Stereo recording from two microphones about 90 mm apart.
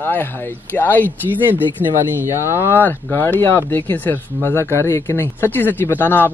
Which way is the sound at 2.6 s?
20° left (ahead or behind).